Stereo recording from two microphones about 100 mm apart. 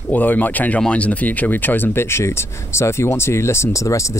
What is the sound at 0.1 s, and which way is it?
Speech, 15° left (ahead or behind).